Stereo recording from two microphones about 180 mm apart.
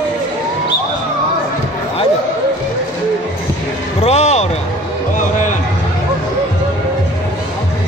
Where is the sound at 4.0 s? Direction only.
35° left (ahead or behind).